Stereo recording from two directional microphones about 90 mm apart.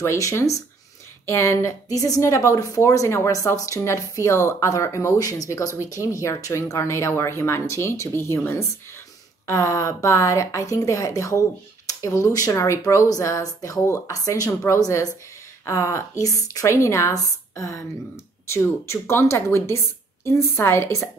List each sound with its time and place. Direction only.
0.0 s a woman's voice: 35° left (ahead or behind)